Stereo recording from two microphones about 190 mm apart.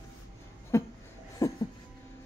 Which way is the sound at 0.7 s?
15° left (ahead or behind).